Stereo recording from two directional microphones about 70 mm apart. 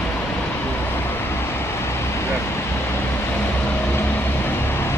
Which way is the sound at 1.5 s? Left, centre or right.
Left.